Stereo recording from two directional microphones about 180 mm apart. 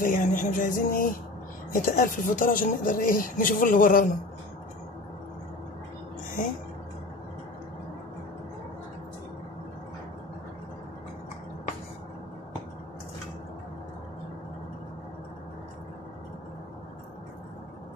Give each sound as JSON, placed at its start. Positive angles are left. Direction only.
{"t": 0.0, "sound": "speech", "side_deg": 50}